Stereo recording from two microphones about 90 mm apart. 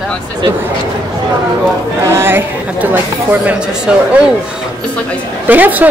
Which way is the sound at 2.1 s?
25° right (ahead or behind).